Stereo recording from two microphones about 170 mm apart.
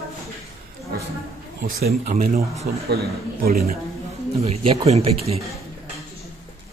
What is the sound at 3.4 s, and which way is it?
Speech, 60° right (ahead or behind).